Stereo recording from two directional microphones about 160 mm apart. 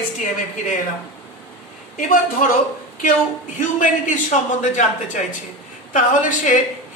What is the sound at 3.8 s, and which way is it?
A man's voice, 55° left (ahead or behind).